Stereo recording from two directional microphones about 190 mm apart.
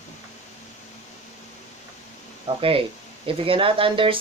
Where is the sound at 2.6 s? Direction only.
30° right (ahead or behind).